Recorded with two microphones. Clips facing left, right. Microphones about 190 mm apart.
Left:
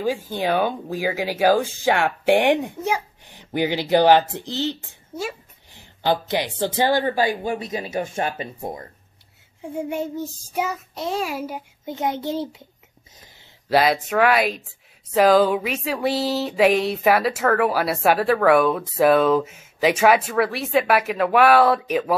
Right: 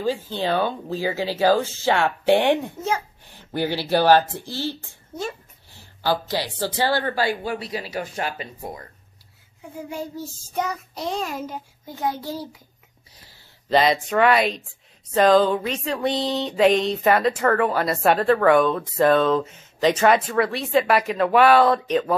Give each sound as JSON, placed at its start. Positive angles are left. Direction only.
{"t": 0.0, "sound": "speech", "side_deg": 10}
{"t": 11.8, "sound": "speech", "side_deg": 20}
{"t": 13.7, "sound": "speech", "side_deg": 5}